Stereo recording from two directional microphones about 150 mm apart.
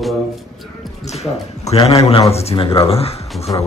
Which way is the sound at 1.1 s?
45° left (ahead or behind).